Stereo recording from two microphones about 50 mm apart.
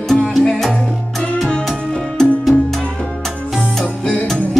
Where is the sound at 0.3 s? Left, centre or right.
Centre.